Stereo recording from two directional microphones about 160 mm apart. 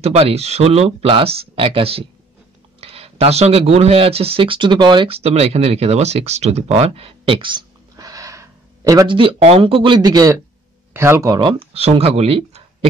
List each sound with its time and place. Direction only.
0.0 s speech: 40° right (ahead or behind)
7.9 s gasp: 20° right (ahead or behind)
10.9 s speech: 15° right (ahead or behind); by 12.6 s 40° right (ahead or behind)